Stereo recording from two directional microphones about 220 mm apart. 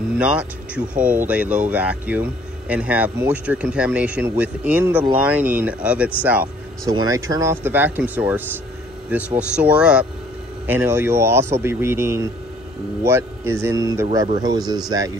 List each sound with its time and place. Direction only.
0.2 s speech: 5° right (ahead or behind)